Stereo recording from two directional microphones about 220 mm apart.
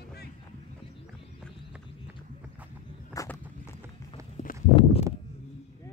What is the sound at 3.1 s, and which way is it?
Walk, 15° left (ahead or behind).